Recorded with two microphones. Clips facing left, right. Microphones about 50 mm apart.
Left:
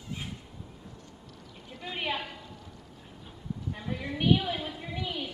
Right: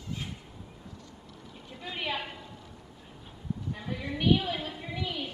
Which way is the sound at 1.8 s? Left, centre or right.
Centre.